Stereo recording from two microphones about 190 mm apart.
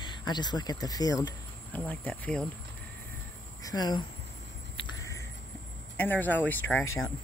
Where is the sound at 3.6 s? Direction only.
20° left (ahead or behind).